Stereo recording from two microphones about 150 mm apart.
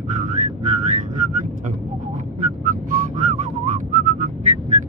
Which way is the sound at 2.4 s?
60° right (ahead or behind).